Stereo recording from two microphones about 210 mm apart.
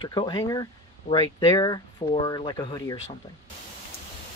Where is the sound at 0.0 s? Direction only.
20° left (ahead or behind).